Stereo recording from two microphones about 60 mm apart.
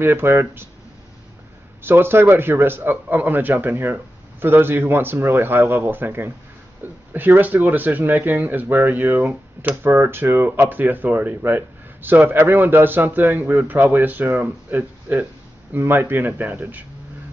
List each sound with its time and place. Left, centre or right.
0.0 s speech: right
1.8 s speech: right